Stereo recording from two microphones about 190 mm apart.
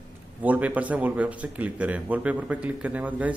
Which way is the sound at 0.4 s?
10° right (ahead or behind).